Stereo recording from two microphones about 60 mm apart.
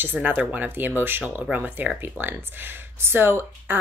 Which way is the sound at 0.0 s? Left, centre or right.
Right.